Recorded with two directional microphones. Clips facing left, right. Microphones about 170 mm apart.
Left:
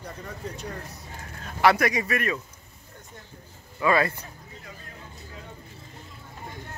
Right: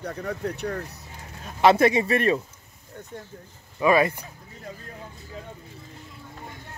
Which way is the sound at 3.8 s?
20° right (ahead or behind).